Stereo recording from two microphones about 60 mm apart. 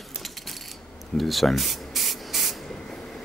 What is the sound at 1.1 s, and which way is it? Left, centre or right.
Spray, centre.